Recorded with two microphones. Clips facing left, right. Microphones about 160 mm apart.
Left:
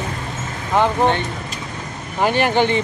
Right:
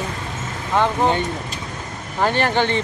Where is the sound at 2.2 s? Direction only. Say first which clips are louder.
Left 2 dB; 15° left (ahead or behind).